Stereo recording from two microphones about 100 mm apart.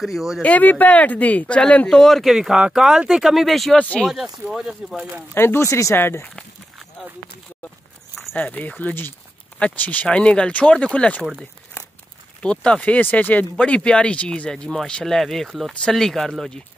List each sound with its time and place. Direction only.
0.0 s speech: centre (ahead or behind)
0.4 s speech: 15° left (ahead or behind)
3.7 s speech: 15° left (ahead or behind)
4.0 s speech: 5° right (ahead or behind)
5.3 s speech: 25° left (ahead or behind)
8.4 s speech: 15° left (ahead or behind)
12.4 s speech: 10° left (ahead or behind)